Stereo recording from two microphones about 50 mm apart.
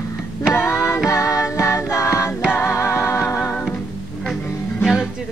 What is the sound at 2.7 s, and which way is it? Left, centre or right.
Music, left.